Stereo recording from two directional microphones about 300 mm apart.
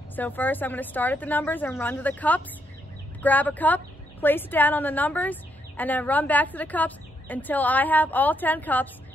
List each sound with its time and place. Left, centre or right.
0.1 s a woman's voice: centre